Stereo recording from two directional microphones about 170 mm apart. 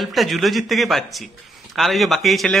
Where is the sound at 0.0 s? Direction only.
Centre (ahead or behind).